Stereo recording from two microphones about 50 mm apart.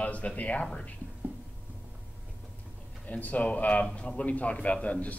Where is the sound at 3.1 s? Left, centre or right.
Left.